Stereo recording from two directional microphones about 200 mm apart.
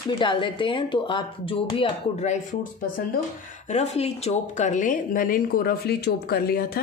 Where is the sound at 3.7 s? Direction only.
35° left (ahead or behind); by 6.7 s 50° left (ahead or behind).